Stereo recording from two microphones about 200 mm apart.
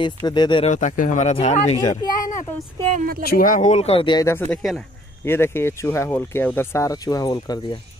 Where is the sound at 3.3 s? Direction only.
45° left (ahead or behind); by 7.8 s 20° left (ahead or behind).